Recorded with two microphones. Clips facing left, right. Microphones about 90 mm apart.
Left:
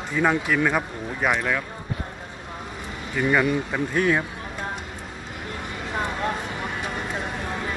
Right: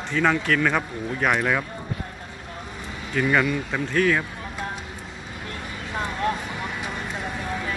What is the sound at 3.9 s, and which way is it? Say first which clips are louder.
Speech: right 1 dB; 20° left (ahead or behind).